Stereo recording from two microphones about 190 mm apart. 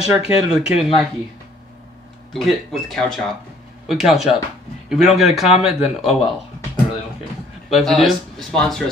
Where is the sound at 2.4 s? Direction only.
Centre (ahead or behind).